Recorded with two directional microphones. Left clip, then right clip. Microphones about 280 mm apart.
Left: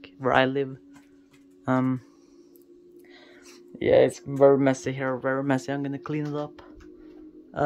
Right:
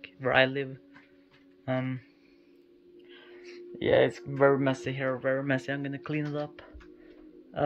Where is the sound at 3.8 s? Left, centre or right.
Centre.